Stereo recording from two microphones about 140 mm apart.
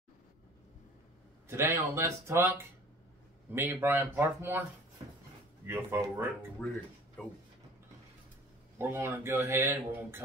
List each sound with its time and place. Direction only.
1.5 s a man's voice: 20° right (ahead or behind)
5.7 s a man's voice: 15° right (ahead or behind)
6.6 s speech: 10° left (ahead or behind)
8.7 s a man's voice: 15° right (ahead or behind)